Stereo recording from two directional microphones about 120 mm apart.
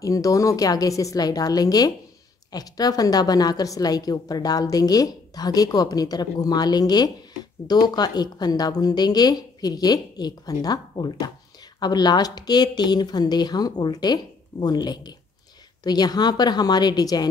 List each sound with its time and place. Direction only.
0.0 s a woman's voice: 30° left (ahead or behind)